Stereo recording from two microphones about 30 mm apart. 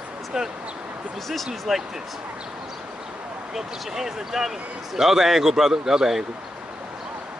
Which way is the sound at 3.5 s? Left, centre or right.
Centre.